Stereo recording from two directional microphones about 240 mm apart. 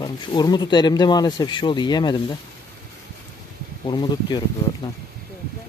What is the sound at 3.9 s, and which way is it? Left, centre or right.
Speech, centre.